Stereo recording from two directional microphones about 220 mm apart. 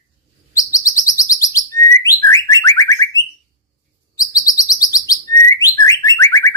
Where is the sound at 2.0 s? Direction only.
15° left (ahead or behind).